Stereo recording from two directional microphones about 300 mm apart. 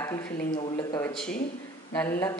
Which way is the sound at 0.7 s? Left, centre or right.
Centre.